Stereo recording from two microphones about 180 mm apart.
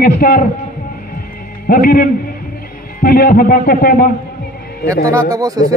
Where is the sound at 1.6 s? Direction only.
55° left (ahead or behind).